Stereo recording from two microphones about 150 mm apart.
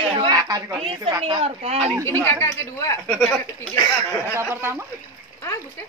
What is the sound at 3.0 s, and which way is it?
Speech, centre (ahead or behind).